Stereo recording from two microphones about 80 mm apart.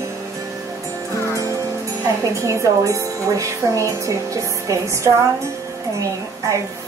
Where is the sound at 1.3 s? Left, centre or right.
Right.